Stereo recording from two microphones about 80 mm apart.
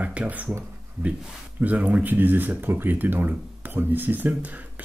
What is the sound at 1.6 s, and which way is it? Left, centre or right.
Speech, centre.